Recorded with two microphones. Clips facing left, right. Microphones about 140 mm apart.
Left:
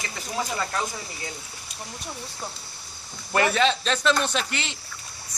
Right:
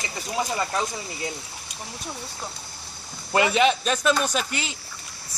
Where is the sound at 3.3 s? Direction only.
15° right (ahead or behind).